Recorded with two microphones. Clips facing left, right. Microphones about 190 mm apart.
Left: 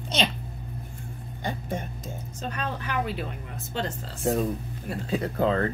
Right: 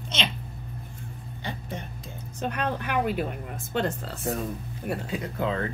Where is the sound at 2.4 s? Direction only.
60° right (ahead or behind).